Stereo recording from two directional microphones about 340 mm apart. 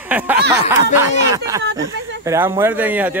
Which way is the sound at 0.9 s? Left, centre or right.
Centre.